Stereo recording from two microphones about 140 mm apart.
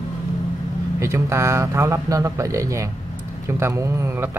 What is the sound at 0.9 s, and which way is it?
Speech, 20° right (ahead or behind).